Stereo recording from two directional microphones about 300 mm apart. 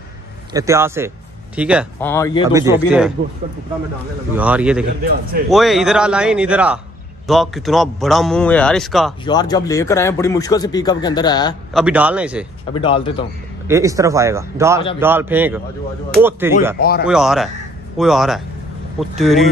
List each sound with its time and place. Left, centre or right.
0.5 s a man's voice: centre
2.0 s a man's voice: centre
2.5 s a man's voice: centre
4.4 s a man's voice: centre
9.2 s a man's voice: centre
11.7 s a man's voice: centre
12.7 s a man's voice: centre
13.7 s a man's voice: centre